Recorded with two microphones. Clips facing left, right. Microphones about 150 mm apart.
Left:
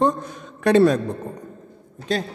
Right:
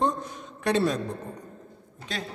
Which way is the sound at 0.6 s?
60° left (ahead or behind).